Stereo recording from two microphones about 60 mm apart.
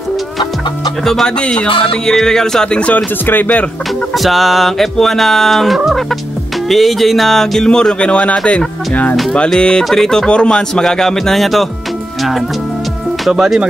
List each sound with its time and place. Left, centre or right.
1.0 s speech: centre; by 3.6 s left
4.1 s speech: centre